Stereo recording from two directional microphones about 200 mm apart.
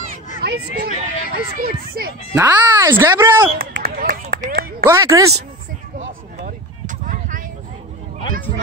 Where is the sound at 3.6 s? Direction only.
45° right (ahead or behind).